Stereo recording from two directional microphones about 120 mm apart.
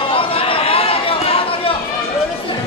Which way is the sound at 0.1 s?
50° left (ahead or behind).